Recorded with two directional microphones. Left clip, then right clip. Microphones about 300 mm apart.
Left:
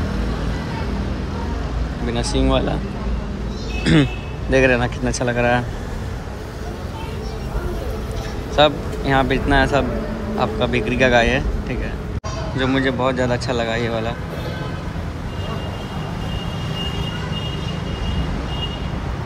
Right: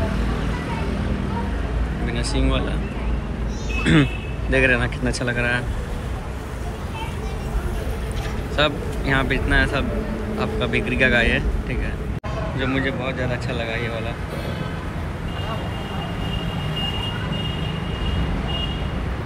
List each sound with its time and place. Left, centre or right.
2.1 s speech: centre
3.9 s speech: centre
8.5 s speech: centre
12.5 s speech: centre
13.7 s speech: left